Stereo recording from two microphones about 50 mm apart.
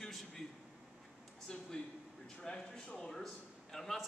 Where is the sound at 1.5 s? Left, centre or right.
Centre.